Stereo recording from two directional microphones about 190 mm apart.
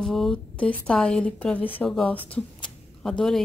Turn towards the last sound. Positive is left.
turn(degrees=0)  # may be behind; listen again after turning